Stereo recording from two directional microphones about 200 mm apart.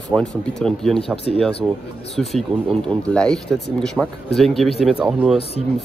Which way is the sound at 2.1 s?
5° left (ahead or behind).